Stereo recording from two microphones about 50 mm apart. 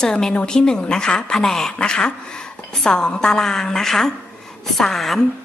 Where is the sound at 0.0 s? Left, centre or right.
Centre.